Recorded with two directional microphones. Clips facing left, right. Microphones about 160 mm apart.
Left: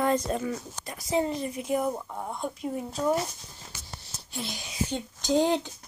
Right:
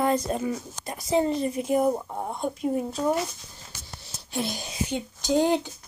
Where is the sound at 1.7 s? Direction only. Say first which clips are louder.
Right 4 dB; 35° right (ahead or behind).